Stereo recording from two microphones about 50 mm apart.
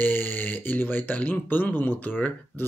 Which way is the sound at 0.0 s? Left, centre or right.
Left.